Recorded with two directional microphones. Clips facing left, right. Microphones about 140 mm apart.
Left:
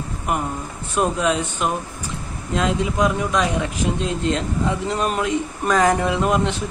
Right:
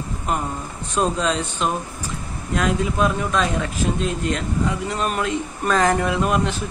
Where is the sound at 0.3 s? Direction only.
15° left (ahead or behind).